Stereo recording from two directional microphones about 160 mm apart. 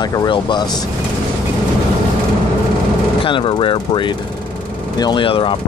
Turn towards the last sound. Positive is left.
turn(degrees=30)  # may be behind; listen again after turning